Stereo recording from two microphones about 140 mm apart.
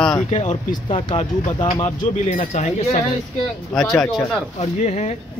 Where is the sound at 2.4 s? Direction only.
50° left (ahead or behind).